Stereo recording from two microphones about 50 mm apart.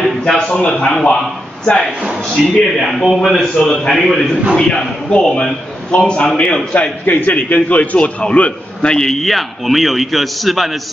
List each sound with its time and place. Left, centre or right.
0.3 s speech: centre
2.4 s a man's voice: centre
2.8 s a man's voice: centre
4.6 s a man's voice: centre
7.1 s a man's voice: left
8.9 s a man's voice: centre